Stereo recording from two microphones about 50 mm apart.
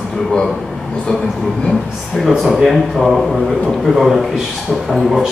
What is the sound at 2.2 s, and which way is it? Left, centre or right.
Speech, centre.